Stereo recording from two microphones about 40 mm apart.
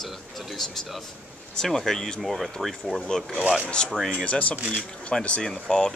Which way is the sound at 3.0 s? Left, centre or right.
Centre.